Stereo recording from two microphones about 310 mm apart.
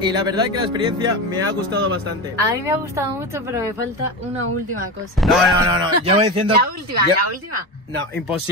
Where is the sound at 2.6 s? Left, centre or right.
Centre.